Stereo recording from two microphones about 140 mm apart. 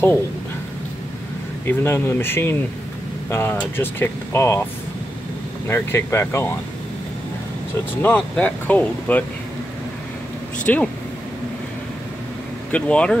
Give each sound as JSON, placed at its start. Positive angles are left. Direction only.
{"t": 1.7, "sound": "speech", "side_deg": 15}
{"t": 5.7, "sound": "speech", "side_deg": 15}
{"t": 8.0, "sound": "speech", "side_deg": 15}
{"t": 10.6, "sound": "speech", "side_deg": 10}
{"t": 12.7, "sound": "speech", "side_deg": 10}